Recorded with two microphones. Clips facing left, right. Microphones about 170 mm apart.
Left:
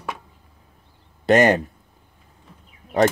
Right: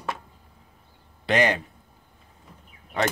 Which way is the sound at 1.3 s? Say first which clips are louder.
Left 7 dB; 45° left (ahead or behind).